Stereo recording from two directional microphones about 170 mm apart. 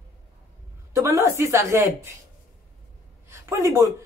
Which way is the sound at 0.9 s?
15° right (ahead or behind).